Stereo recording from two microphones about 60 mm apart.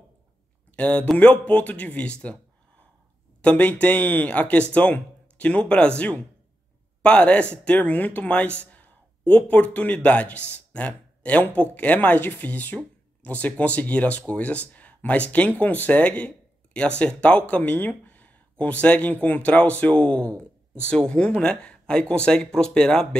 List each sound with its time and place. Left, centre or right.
0.7 s speech: left
3.4 s speech: left